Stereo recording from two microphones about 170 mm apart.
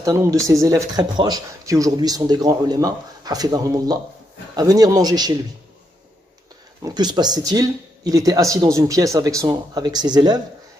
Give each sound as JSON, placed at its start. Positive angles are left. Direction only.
{"t": 0.0, "sound": "speech", "side_deg": -20}
{"t": 6.8, "sound": "speech", "side_deg": -25}